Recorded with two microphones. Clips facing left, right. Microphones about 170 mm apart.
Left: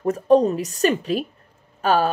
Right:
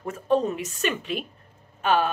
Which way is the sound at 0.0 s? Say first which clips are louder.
Left 7 dB; 40° left (ahead or behind).